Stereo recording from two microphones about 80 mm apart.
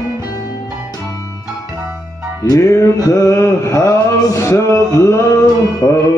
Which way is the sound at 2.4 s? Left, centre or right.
Left.